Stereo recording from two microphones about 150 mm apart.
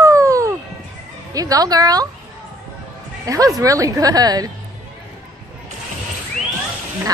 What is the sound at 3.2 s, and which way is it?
Speech, 25° right (ahead or behind).